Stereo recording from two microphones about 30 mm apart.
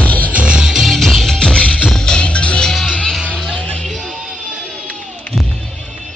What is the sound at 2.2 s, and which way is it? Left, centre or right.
Music, left.